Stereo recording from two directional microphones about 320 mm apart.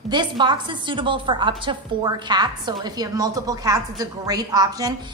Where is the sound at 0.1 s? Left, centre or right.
Centre.